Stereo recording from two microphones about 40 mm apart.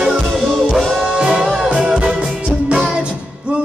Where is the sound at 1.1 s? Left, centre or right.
Centre.